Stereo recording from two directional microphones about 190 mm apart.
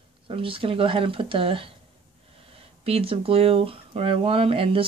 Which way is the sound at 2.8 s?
30° right (ahead or behind).